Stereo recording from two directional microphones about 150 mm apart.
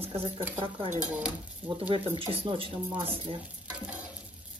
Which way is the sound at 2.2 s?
35° right (ahead or behind).